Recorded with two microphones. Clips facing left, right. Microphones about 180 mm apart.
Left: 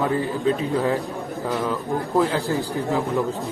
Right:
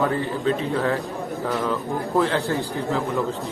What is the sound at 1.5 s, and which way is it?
Speech, 5° left (ahead or behind).